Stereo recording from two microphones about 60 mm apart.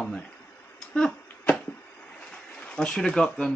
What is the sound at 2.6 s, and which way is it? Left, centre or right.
Speech, centre.